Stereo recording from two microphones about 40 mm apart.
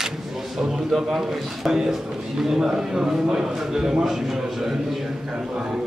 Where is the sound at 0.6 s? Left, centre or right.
Centre.